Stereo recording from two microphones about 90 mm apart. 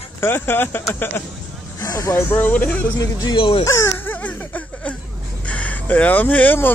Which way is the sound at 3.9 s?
20° left (ahead or behind).